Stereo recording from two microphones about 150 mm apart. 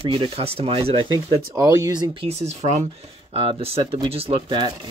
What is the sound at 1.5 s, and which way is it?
Speech, 25° right (ahead or behind).